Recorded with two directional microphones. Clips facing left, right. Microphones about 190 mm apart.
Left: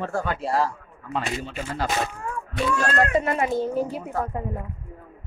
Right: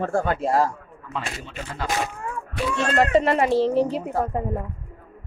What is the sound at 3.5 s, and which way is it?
Speech, 85° right.